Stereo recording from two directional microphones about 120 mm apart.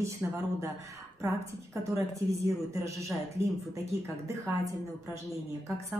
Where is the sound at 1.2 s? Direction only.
25° right (ahead or behind).